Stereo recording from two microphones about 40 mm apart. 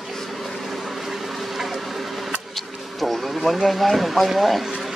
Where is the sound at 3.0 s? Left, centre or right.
Centre.